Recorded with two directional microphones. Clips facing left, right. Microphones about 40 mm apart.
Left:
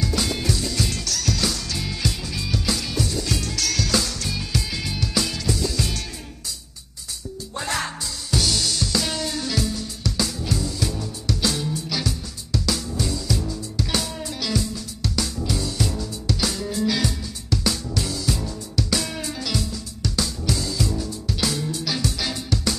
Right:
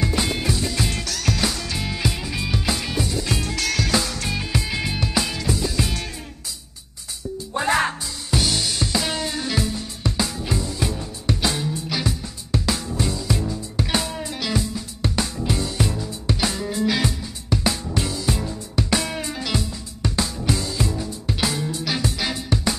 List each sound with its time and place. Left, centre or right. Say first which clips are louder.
0.0 s music: right 2 dB; right
7.5 s music: right 7 dB; right